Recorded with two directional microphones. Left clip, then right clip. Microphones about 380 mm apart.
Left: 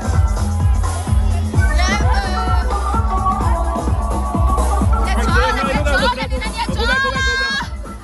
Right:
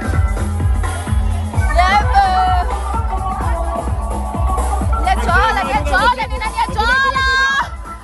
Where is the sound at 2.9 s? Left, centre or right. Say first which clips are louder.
Left 3 dB; centre.